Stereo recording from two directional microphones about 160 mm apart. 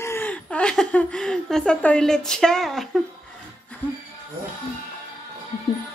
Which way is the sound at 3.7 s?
10° left (ahead or behind).